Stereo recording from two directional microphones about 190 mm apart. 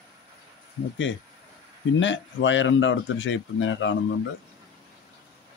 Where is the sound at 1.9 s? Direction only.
80° left.